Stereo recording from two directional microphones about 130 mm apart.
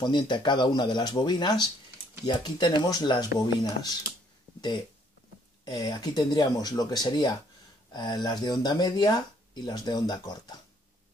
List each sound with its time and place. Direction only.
0.0 s speech: 35° left (ahead or behind)